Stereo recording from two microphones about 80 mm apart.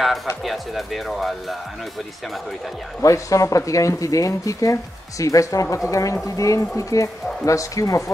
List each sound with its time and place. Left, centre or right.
0.4 s speech: centre
3.0 s speech: left